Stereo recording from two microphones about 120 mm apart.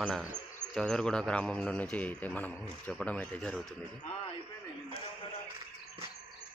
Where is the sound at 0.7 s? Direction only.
5° left (ahead or behind).